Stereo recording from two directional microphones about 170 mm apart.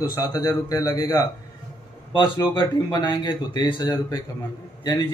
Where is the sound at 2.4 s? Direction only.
25° left (ahead or behind).